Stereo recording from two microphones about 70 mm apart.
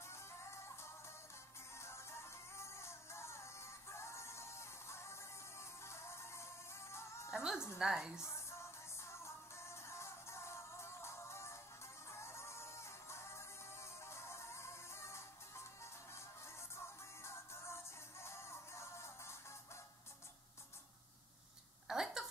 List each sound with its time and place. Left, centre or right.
0.0 s music: left
7.2 s music: centre
7.8 s a woman's voice: centre
8.2 s music: left
21.8 s a sound: centre